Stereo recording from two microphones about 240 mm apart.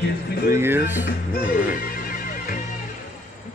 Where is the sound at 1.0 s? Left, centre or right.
Left.